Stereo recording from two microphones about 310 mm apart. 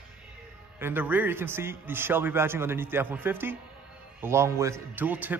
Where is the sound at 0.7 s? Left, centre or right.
Centre.